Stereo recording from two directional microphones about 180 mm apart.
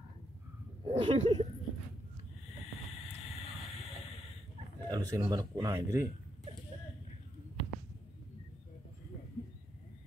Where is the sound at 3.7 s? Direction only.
35° left (ahead or behind).